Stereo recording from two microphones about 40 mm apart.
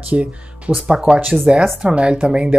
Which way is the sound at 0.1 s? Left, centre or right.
Right.